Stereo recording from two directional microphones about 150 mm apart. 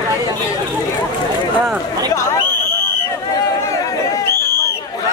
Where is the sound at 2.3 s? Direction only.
15° left (ahead or behind).